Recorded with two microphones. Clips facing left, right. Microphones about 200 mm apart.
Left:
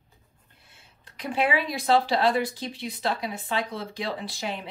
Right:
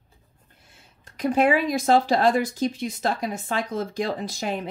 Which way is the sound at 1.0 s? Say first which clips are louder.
Right 6 dB; 45° right (ahead or behind).